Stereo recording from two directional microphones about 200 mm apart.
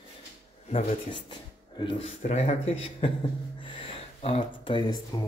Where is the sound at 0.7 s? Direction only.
30° left (ahead or behind).